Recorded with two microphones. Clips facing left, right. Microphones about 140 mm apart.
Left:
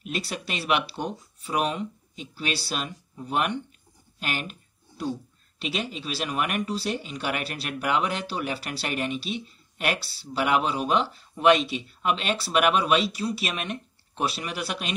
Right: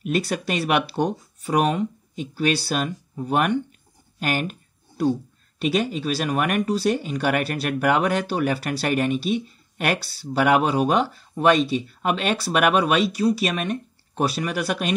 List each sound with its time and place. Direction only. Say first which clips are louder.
0.0 s speech: right 8 dB; 45° right (ahead or behind)
4.2 s a sound: right 7 dB; 45° right (ahead or behind)
5.6 s speech: right 9 dB; 45° right (ahead or behind)